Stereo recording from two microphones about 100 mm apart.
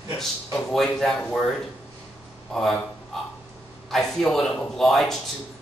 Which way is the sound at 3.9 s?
5° left (ahead or behind).